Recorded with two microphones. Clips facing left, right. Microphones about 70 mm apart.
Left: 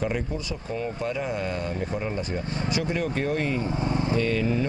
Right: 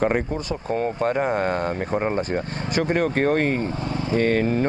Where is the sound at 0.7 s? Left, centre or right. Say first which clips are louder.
Right 7 dB; right.